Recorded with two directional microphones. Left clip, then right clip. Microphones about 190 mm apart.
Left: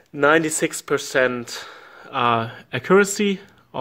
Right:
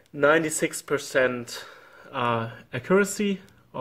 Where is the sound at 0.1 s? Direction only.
40° left (ahead or behind).